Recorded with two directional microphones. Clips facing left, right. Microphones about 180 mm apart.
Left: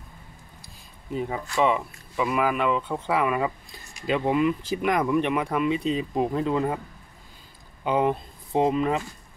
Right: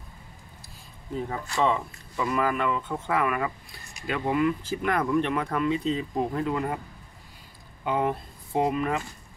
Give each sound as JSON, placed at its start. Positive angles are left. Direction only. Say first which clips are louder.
{"t": 1.1, "sound": "speech", "louder": "left 3 dB", "side_deg": 15}
{"t": 7.8, "sound": "speech", "louder": "left 3 dB", "side_deg": 20}